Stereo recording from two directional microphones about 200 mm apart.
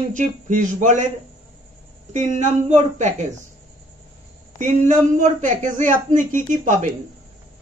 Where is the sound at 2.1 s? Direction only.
35° right (ahead or behind).